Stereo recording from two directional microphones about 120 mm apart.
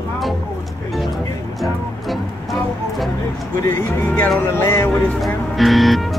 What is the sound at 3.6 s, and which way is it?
Speech, 20° left (ahead or behind).